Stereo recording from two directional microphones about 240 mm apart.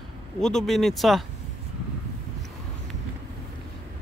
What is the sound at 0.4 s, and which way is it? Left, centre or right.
Speech, centre.